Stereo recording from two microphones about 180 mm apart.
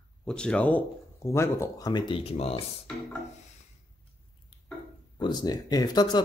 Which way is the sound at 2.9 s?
5° left (ahead or behind).